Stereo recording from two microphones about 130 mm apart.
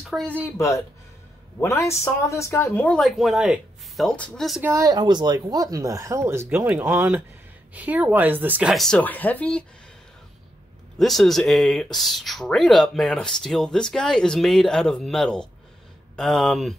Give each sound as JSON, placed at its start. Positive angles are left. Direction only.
{"t": 0.1, "sound": "speech", "side_deg": 5}
{"t": 0.5, "sound": "speech", "side_deg": 25}
{"t": 3.0, "sound": "speech", "side_deg": 0}
{"t": 4.6, "sound": "speech", "side_deg": -20}
{"t": 8.7, "sound": "speech", "side_deg": 5}
{"t": 11.0, "sound": "speech", "side_deg": 0}